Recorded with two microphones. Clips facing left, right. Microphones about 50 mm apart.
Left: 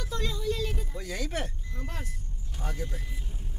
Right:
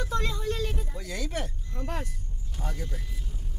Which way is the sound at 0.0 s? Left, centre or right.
Right.